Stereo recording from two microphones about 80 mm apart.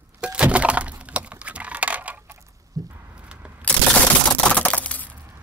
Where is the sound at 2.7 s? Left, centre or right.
Right.